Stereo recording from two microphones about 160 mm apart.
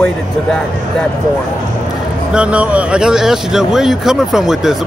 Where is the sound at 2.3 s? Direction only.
5° right (ahead or behind).